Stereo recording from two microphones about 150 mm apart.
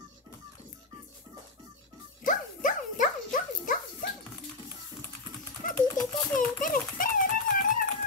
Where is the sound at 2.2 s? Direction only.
60° left (ahead or behind).